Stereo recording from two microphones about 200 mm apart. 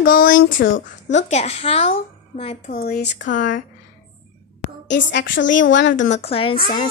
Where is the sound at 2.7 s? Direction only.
50° left (ahead or behind).